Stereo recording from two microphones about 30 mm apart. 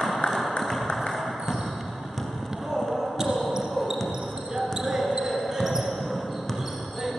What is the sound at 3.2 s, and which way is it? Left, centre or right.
Basketball bounce, centre.